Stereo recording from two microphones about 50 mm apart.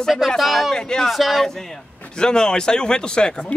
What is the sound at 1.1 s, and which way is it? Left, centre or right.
Speech, centre.